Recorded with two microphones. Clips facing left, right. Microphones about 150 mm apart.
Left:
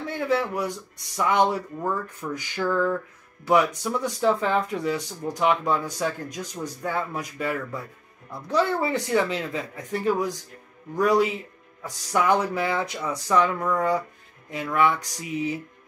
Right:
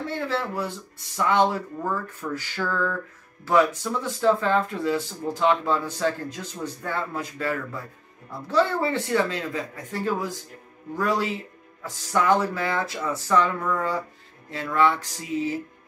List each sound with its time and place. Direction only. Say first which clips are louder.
0.0 s speech: left 3 dB; 15° left (ahead or behind)